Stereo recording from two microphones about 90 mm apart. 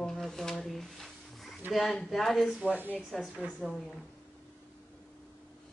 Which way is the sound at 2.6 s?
20° right (ahead or behind).